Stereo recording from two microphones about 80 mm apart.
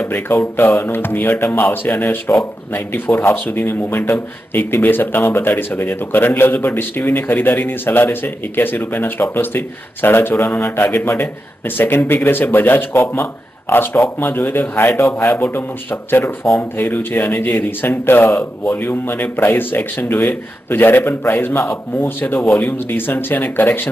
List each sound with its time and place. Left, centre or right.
0.0 s mantra: left
0.6 s speech: left